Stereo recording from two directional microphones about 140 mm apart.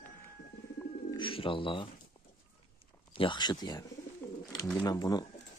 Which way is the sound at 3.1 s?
35° left (ahead or behind).